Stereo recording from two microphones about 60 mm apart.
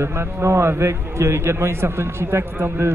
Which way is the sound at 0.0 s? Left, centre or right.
Right.